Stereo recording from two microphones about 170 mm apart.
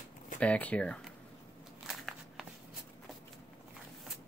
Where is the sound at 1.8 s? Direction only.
Centre (ahead or behind).